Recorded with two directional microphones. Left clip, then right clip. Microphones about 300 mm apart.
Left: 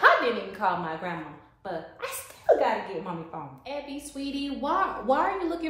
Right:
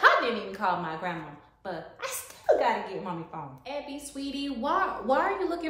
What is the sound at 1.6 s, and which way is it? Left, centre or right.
Hiccup, centre.